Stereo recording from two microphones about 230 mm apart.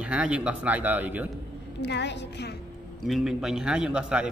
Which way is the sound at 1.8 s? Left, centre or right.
Left.